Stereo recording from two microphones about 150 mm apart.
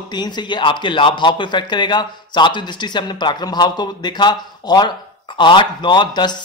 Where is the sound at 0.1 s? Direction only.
30° left (ahead or behind).